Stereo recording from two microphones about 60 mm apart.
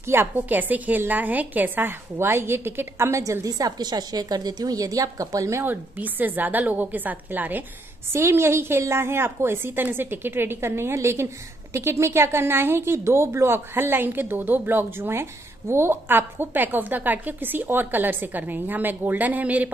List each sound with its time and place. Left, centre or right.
0.0 s a woman's voice: right
3.4 s a woman's voice: right
5.6 s a woman's voice: right
8.1 s a woman's voice: right